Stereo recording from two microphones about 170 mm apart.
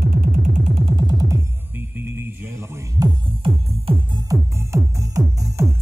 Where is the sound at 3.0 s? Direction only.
20° right (ahead or behind).